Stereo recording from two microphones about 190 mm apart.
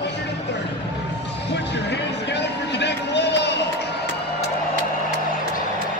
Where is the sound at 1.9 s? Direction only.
65° left (ahead or behind).